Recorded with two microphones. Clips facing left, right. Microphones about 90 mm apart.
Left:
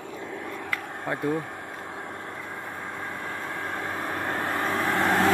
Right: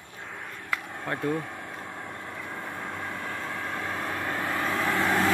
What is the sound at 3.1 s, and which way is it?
Vehicle, 25° left (ahead or behind).